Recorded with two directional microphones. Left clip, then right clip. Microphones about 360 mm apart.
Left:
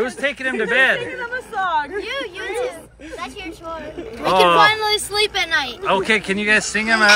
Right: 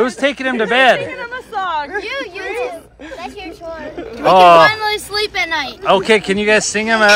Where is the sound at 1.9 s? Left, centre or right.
Centre.